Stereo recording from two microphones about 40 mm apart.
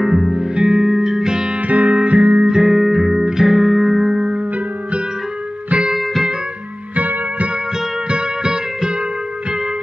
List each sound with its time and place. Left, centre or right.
0.0 s music: centre
1.7 s music: right
2.4 s music: centre
7.0 s music: right
8.1 s music: right